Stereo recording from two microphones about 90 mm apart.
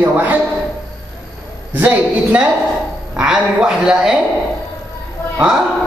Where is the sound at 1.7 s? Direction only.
20° right (ahead or behind).